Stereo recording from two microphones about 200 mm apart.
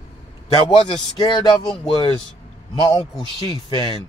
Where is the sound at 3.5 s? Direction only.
25° left (ahead or behind).